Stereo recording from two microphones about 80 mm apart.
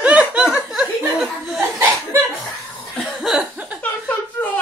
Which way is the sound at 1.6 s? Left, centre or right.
Right.